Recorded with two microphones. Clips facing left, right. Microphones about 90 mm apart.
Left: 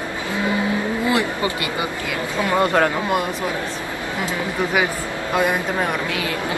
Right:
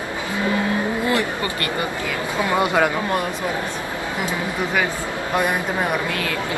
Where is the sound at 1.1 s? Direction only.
20° left (ahead or behind).